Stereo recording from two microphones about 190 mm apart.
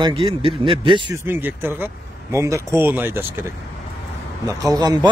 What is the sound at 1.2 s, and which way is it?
Speech, 10° right (ahead or behind).